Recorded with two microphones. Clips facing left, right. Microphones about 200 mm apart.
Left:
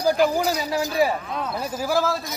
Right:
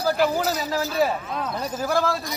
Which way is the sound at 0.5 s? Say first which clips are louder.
Left 1 dB; 15° left (ahead or behind).